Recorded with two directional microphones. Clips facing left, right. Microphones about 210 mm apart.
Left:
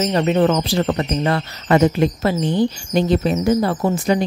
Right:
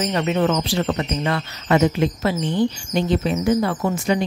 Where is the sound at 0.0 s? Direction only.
35° left (ahead or behind).